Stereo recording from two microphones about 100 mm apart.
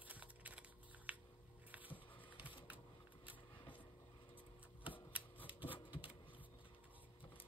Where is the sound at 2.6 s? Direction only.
15° right (ahead or behind).